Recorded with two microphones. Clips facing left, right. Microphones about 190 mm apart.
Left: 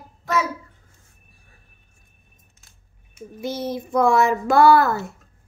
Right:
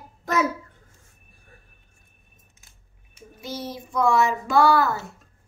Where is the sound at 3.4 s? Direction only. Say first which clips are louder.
Left 6 dB; 55° left (ahead or behind).